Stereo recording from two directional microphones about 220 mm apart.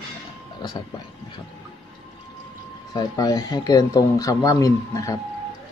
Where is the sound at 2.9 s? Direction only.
15° left (ahead or behind).